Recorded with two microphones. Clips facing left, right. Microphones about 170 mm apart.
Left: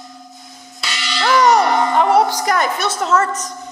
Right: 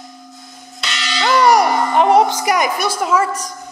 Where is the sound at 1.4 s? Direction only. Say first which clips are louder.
Right 1 dB; 10° right (ahead or behind).